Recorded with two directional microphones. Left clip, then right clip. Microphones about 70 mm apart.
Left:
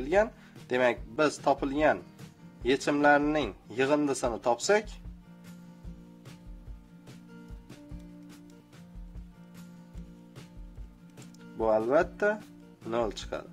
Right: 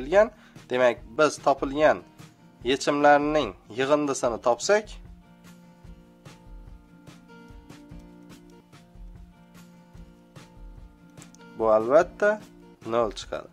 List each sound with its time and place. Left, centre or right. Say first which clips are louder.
0.0 s a man's voice: right 6 dB; centre
11.6 s a man's voice: right 6 dB; centre
13.2 s speech: right 3 dB; centre